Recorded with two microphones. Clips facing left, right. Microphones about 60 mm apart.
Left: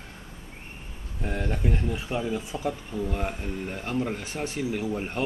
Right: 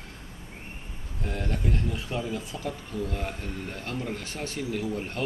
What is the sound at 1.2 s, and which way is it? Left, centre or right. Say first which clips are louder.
Speech: left 2 dB; centre.